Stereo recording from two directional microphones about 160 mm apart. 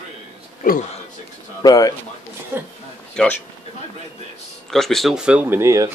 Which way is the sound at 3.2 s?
5° left (ahead or behind).